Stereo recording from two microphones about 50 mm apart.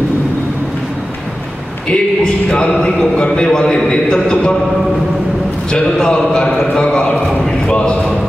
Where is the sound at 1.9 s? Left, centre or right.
Centre.